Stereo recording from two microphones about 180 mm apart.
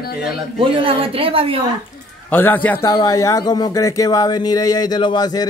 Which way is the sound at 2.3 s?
10° left (ahead or behind).